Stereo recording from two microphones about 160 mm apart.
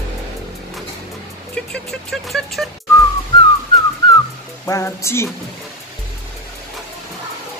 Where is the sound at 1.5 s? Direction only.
5° left (ahead or behind).